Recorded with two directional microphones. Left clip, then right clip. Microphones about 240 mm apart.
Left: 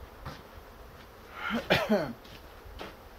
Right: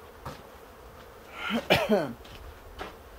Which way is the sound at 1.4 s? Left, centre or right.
Right.